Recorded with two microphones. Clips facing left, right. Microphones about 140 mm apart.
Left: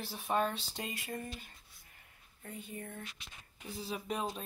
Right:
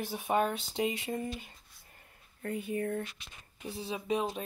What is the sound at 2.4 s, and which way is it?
Speech, 80° right.